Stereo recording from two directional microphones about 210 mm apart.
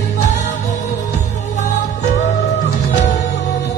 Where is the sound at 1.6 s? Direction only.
35° left (ahead or behind).